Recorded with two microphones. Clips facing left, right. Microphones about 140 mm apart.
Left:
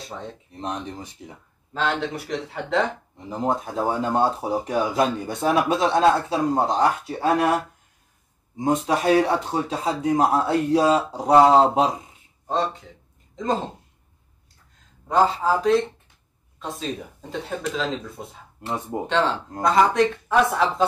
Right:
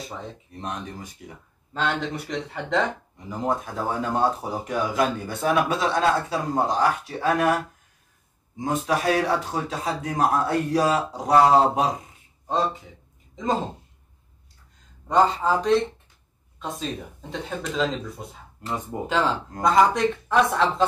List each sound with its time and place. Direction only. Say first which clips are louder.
0.0 s speech: even; centre (ahead or behind)
0.5 s a man's voice: left 3 dB; 25° left (ahead or behind)
1.7 s speech: left 1 dB; centre (ahead or behind)
3.3 s a man's voice: left 2 dB; 25° left (ahead or behind)
8.5 s a man's voice: left 3 dB; 25° left (ahead or behind)
12.4 s speech: even; centre (ahead or behind)
15.0 s speech: even; 5° left (ahead or behind)